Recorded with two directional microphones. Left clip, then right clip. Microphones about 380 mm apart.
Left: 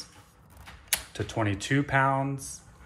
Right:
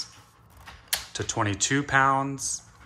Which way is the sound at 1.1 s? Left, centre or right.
Centre.